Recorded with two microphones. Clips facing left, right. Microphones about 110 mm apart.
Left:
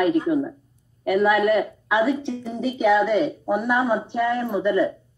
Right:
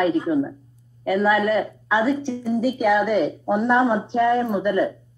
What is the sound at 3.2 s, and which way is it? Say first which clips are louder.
Speech: right 2 dB; 15° right (ahead or behind).